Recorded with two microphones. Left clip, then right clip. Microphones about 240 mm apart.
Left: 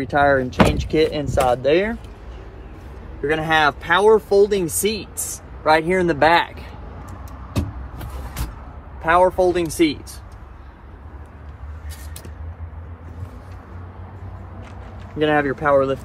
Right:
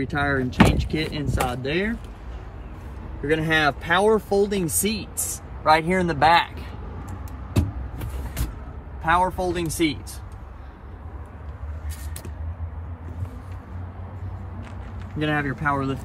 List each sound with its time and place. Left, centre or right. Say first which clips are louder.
0.0 s speech: left 8 dB; centre
3.3 s speech: left 4 dB; centre
5.6 s speech: left 2 dB; right
9.0 s speech: left 6 dB; centre
15.1 s speech: left 7 dB; centre